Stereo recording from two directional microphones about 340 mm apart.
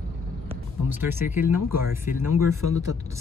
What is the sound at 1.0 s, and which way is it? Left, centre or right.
Speech, centre.